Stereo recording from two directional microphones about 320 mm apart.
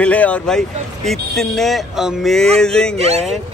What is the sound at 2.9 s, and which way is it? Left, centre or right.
Speech, centre.